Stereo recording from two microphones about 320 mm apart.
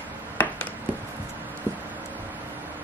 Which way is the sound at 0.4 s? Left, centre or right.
Centre.